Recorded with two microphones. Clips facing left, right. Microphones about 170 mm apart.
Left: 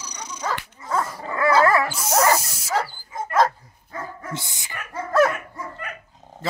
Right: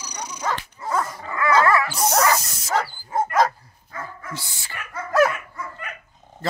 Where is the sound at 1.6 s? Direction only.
35° left (ahead or behind).